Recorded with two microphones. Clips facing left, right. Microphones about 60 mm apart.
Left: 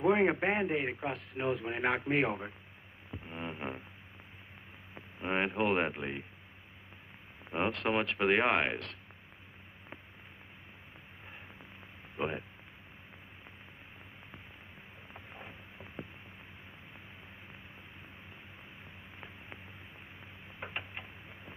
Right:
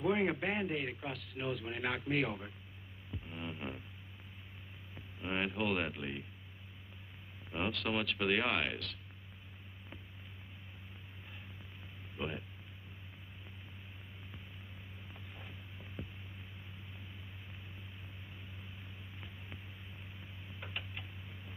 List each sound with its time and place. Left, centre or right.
0.0 s a man's voice: left
3.1 s music: left
4.9 s speech: left
7.5 s a man's voice: left
12.2 s a man's voice: left
15.1 s hum: left
20.6 s a sound: left